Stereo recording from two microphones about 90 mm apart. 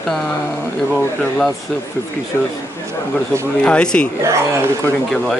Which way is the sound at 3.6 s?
10° left (ahead or behind).